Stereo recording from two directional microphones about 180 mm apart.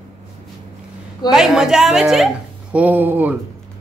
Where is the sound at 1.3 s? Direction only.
5° right (ahead or behind).